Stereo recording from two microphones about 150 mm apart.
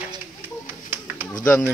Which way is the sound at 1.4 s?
5° left (ahead or behind).